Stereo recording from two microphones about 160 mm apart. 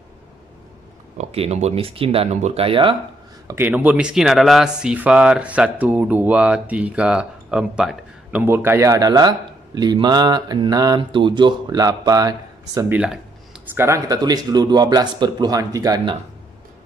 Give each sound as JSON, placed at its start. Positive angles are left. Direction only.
{"t": 1.1, "sound": "speech", "side_deg": -40}
{"t": 3.4, "sound": "speech", "side_deg": -15}
{"t": 12.9, "sound": "speech", "side_deg": -5}
{"t": 13.7, "sound": "speech", "side_deg": -20}